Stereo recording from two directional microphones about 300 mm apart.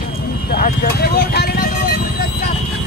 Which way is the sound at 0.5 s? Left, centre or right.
Left.